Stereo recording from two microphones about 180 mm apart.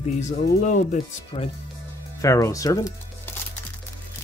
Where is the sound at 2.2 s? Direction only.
15° left (ahead or behind).